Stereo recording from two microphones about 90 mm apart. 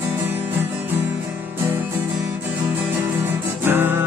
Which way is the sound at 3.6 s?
25° right (ahead or behind).